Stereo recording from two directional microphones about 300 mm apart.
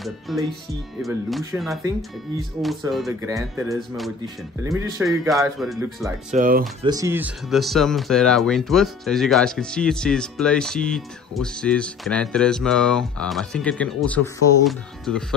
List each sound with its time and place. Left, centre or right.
0.3 s speech: centre
4.6 s speech: centre
6.3 s speech: right
6.8 s speech: centre